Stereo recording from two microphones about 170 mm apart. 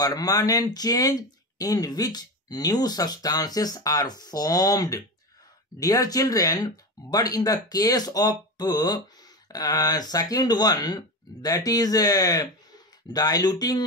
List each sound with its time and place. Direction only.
0.0 s speech: 20° left (ahead or behind)